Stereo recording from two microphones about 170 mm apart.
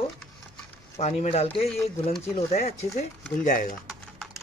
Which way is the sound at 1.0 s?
40° left (ahead or behind).